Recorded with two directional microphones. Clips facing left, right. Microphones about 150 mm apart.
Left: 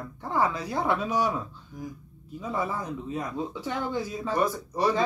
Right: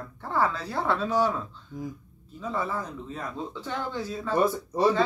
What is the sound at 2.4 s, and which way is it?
Speech, 15° left (ahead or behind).